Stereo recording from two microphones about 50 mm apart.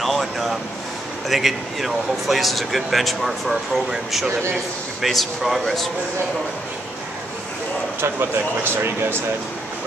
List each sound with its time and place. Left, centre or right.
0.0 s vehicle: centre
1.3 s speech: centre
8.0 s speech: right